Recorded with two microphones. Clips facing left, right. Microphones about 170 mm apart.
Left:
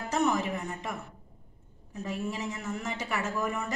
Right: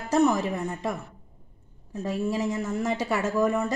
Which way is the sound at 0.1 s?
35° right (ahead or behind).